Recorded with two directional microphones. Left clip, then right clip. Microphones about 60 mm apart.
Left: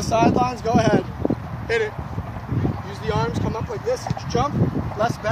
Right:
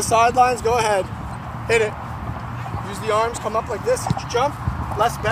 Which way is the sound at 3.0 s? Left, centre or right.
Left.